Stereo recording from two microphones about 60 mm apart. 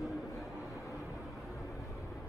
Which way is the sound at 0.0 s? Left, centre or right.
Centre.